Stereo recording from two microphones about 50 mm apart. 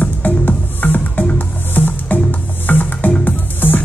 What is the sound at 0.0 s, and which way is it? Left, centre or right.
Music, left.